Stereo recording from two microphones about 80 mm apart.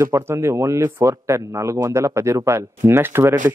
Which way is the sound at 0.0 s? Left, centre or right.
Right.